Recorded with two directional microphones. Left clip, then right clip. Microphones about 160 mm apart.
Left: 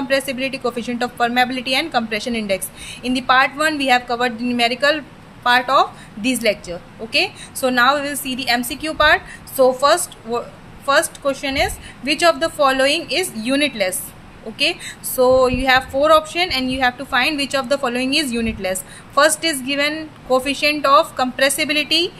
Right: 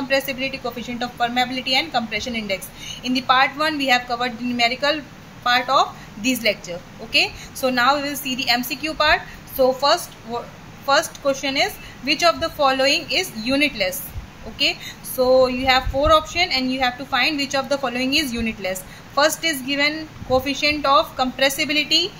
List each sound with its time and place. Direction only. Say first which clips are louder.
0.1 s a woman's voice: left 2 dB; 35° left (ahead or behind)
10.9 s a woman's voice: left 2 dB; 25° left (ahead or behind)